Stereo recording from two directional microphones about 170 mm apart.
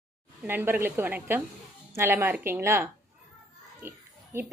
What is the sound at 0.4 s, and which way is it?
A woman's voice, 10° right (ahead or behind).